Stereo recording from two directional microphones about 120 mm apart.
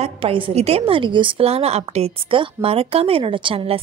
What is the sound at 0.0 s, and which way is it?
A woman's voice, 50° right (ahead or behind).